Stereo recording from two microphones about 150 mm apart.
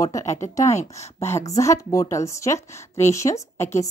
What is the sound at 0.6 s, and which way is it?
Speech, 50° left (ahead or behind).